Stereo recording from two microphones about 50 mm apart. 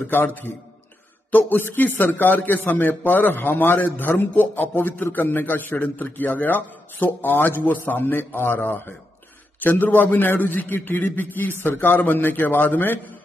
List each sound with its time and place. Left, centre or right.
0.0 s a man's voice: left